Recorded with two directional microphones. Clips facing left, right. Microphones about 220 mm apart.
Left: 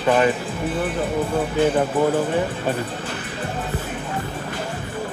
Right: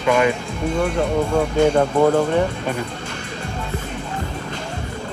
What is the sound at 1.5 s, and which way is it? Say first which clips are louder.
Speech: right 2 dB; 5° left (ahead or behind).